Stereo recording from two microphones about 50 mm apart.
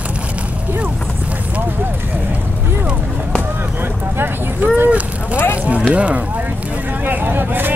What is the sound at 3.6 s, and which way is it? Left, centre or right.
Speech, right.